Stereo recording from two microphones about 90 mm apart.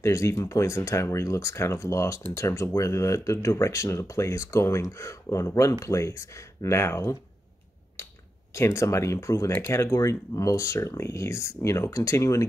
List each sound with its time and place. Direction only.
0.0 s speech: 30° left (ahead or behind)
8.5 s speech: 30° left (ahead or behind)